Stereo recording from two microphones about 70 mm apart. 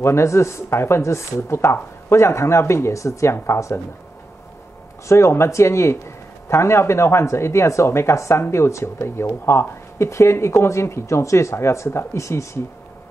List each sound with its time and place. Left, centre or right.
0.0 s speech: left
5.0 s speech: left